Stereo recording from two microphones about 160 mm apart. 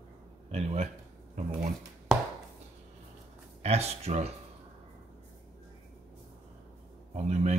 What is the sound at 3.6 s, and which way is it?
Speech, 40° right (ahead or behind).